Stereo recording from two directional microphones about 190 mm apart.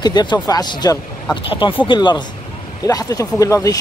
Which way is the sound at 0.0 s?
20° left (ahead or behind).